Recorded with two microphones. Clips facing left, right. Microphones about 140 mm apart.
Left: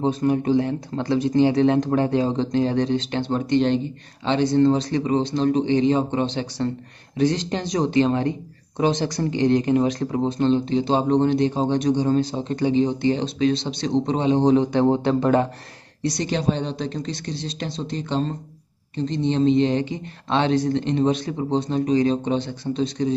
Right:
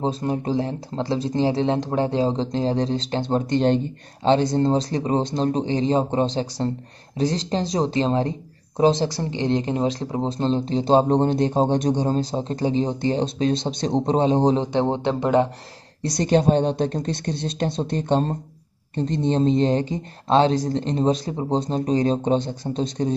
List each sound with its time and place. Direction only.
0.0 s speech: 30° right (ahead or behind)
16.0 s speech: 45° right (ahead or behind)